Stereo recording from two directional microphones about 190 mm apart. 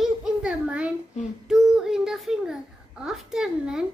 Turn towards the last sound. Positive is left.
turn(degrees=-5)  # may be behind; listen again after turning